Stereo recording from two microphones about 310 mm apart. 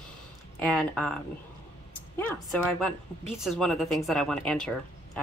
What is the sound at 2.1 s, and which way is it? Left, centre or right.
Speech, centre.